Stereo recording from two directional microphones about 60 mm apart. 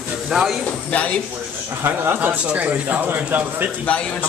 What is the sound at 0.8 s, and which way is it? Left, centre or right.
Speech, left.